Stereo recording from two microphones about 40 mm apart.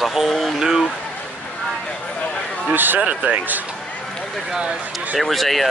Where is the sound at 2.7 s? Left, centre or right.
Right.